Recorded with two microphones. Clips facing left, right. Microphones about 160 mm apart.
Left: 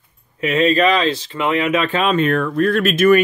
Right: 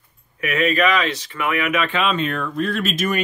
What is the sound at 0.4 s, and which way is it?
Speech, 30° left (ahead or behind).